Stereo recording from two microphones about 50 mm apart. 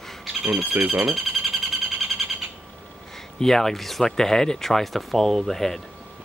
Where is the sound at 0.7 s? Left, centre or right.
Right.